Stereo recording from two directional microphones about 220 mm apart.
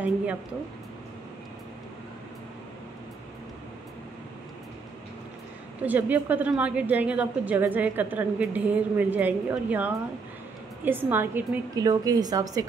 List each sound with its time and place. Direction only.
5.9 s a woman's voice: 5° right (ahead or behind)